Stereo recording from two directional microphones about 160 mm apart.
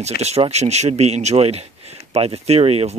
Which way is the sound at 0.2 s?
40° right (ahead or behind).